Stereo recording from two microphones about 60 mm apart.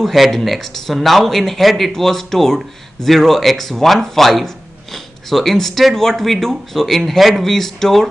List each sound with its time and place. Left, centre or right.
0.0 s speech: centre